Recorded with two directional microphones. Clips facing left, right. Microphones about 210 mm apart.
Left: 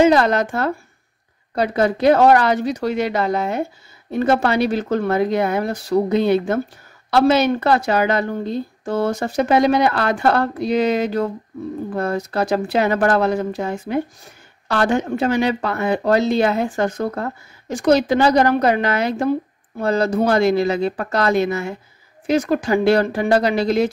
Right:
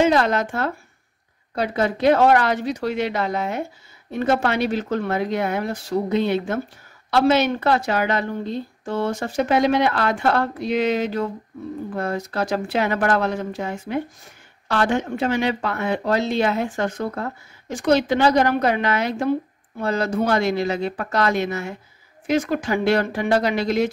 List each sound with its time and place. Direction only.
0.0 s a woman's voice: 40° left (ahead or behind)
12.0 s a woman's voice: 35° left (ahead or behind)